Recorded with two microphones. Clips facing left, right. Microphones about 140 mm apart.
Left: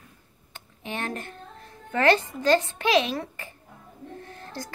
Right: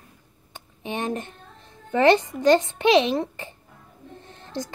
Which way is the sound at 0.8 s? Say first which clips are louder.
Right 4 dB; 20° right (ahead or behind).